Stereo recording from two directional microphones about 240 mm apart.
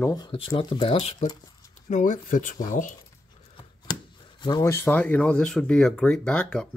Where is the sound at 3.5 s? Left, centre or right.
Centre.